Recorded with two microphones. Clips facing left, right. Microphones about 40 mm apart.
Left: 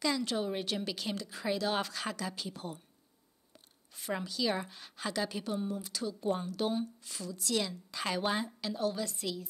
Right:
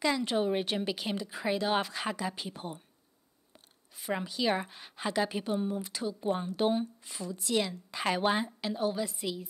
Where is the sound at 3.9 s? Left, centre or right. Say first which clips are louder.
Right 3 dB; centre.